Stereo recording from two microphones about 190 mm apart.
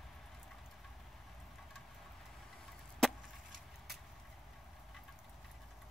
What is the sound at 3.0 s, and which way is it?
Chop, centre (ahead or behind).